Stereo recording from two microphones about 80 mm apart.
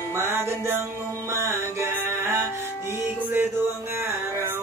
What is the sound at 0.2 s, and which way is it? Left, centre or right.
Music, right.